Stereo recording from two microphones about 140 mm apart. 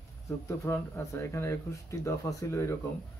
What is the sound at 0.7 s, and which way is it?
Speech, 15° left (ahead or behind).